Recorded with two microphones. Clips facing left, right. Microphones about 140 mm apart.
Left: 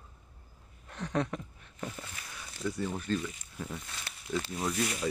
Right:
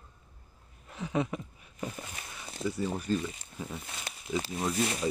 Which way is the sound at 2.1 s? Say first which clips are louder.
Right 2 dB; 25° right (ahead or behind).